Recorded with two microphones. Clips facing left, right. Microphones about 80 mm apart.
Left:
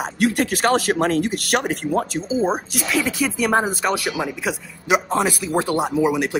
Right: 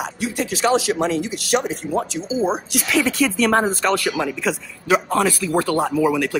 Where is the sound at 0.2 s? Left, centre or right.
Left.